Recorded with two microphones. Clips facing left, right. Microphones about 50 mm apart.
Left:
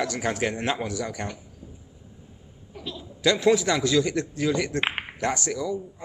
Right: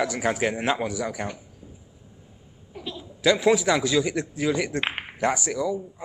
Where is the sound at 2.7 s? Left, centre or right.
Centre.